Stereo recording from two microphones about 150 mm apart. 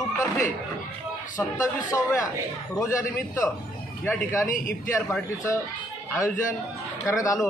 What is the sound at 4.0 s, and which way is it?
Speech, 10° left (ahead or behind).